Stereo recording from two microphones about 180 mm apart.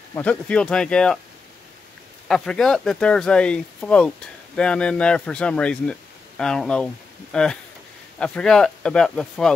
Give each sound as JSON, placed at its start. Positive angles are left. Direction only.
{"t": 0.1, "sound": "speech", "side_deg": 5}
{"t": 2.2, "sound": "speech", "side_deg": 5}